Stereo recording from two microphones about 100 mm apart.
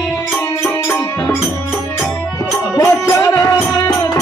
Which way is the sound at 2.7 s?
30° left (ahead or behind).